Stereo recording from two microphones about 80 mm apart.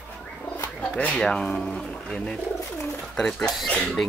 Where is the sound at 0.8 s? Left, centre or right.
Centre.